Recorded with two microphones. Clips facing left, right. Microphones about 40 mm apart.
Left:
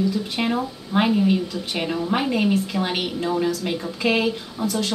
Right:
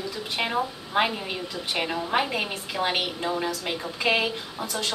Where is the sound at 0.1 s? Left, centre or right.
Centre.